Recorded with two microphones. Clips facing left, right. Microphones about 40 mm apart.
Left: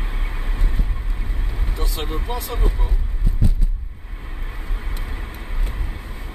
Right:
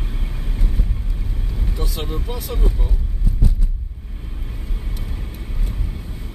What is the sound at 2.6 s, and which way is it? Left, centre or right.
Vehicle, centre.